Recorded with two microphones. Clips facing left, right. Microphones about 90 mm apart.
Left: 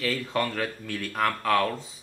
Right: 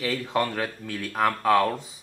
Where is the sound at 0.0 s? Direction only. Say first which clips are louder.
Right 2 dB; 20° right (ahead or behind).